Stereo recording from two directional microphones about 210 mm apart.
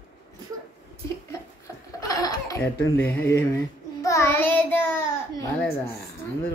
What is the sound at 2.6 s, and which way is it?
A child's voice, 10° left (ahead or behind).